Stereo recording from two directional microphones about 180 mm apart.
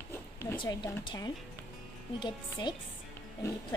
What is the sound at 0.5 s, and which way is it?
A woman's voice, 20° left (ahead or behind).